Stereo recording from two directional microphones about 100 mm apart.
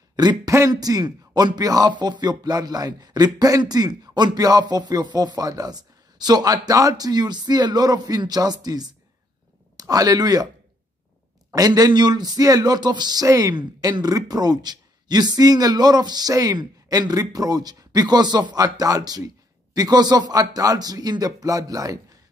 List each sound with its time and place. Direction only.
0.1 s a sound: 45° right (ahead or behind)
0.5 s speech: 35° right (ahead or behind)
11.5 s speech: 40° right (ahead or behind)